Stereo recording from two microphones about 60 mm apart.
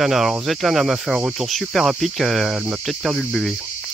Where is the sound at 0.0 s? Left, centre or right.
Centre.